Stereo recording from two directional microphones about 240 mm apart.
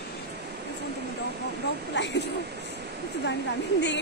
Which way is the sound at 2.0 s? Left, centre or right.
Left.